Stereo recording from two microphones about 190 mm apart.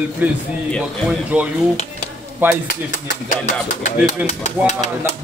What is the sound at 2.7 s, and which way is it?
Speech, 45° left (ahead or behind).